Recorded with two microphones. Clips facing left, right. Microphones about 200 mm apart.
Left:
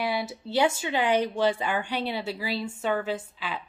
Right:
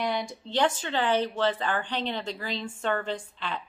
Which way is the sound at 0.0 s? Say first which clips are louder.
Left 1 dB; 5° left (ahead or behind).